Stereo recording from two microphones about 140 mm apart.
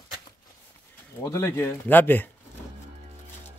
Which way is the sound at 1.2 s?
20° left (ahead or behind).